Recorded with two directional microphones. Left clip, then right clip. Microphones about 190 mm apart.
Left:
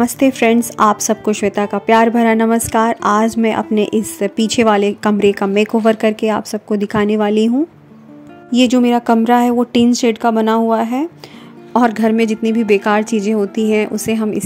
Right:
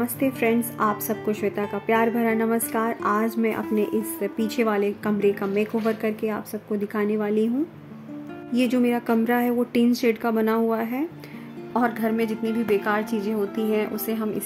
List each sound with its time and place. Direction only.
0.0 s a woman's voice: 50° left (ahead or behind)